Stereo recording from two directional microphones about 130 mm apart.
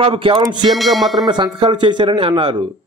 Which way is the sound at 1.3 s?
35° right (ahead or behind).